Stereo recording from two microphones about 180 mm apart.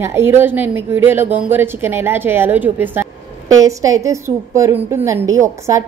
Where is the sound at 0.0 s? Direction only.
15° right (ahead or behind).